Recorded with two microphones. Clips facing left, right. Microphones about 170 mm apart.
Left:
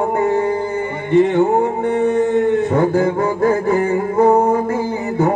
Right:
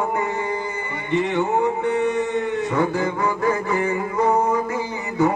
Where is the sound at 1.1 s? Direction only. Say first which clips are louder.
Left 7 dB; 55° left (ahead or behind).